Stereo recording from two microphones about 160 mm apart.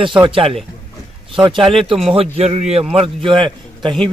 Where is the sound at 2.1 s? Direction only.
35° right (ahead or behind).